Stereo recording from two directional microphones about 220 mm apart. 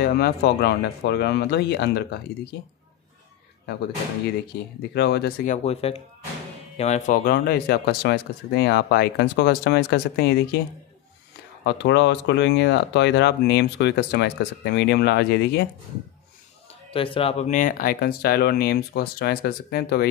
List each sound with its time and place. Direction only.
0.0 s speech: 45° left (ahead or behind)
4.9 s speech: 50° left (ahead or behind)
11.6 s speech: 50° left (ahead or behind)
16.9 s speech: 25° left (ahead or behind); by 20.1 s 45° left (ahead or behind)